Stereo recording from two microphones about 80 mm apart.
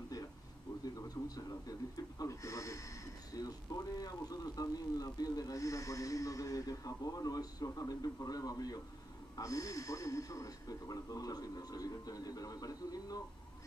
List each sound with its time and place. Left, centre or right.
0.9 s a man's voice: left